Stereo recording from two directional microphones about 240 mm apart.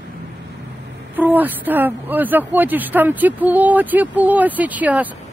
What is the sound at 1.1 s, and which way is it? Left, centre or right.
Speech, centre.